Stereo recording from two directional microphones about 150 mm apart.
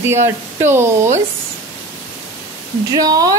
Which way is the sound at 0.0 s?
15° right (ahead or behind).